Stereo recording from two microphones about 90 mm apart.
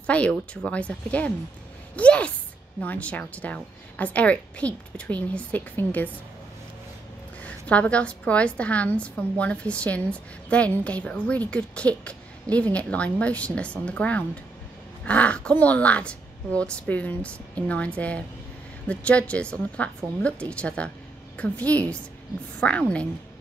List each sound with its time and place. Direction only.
0.0 s a woman's voice: 15° left (ahead or behind)
7.4 s a woman's voice: 15° left (ahead or behind)